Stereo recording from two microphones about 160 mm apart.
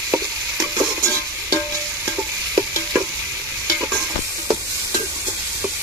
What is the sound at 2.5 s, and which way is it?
Stir, 15° right (ahead or behind).